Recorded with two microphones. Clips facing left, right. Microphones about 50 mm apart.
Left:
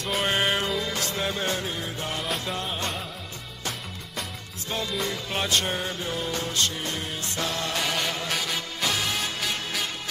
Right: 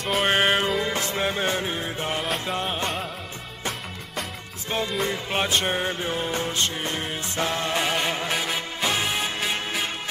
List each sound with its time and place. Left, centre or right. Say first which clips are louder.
0.0 s music: right 3 dB; centre
0.3 s music: right 4 dB; right
4.6 s music: right 3 dB; right